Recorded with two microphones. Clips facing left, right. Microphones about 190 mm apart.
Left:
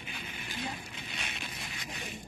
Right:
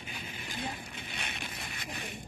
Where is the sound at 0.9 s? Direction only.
55° right (ahead or behind).